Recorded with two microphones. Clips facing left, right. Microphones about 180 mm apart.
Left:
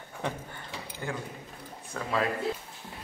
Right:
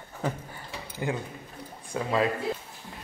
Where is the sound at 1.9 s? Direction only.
20° right (ahead or behind).